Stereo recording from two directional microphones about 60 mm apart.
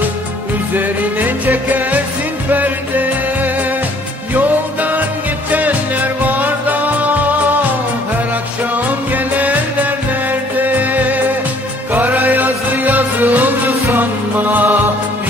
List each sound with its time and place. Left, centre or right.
0.7 s music: right
8.7 s music: right